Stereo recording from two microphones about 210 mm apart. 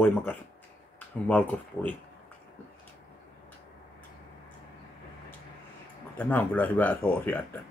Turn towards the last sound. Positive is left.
turn(degrees=10)  # may be behind; listen again after turning